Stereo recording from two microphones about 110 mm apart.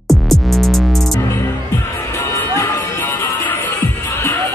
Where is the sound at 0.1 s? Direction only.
Centre (ahead or behind).